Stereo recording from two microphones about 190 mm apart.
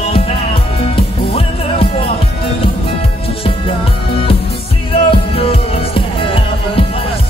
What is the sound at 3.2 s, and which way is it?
Music, 30° left (ahead or behind).